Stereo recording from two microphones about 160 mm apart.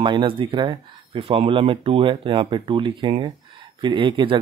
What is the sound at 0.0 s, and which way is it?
Speech, 30° right (ahead or behind).